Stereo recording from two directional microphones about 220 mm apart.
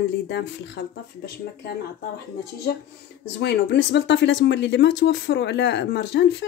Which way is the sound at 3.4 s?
50° left (ahead or behind).